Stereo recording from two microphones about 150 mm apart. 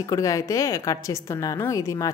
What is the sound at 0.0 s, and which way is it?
A woman's voice, 20° left (ahead or behind).